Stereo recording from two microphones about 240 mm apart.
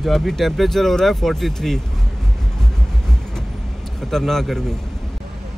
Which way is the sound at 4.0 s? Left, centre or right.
Centre.